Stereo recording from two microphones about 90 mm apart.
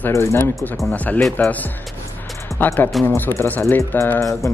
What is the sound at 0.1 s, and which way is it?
Speech, 30° left (ahead or behind).